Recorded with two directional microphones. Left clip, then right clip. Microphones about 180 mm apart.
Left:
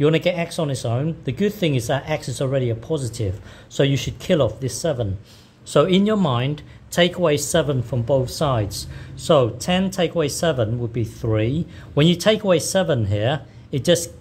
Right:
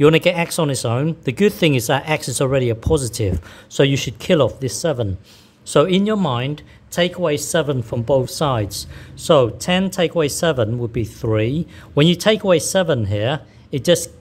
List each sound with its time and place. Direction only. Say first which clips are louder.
0.0 s speech: right 5 dB; 25° right (ahead or behind)